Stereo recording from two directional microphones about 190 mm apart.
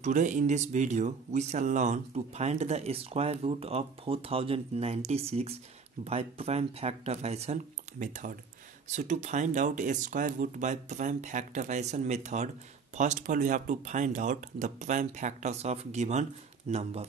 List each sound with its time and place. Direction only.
0.0 s speech: 40° right (ahead or behind)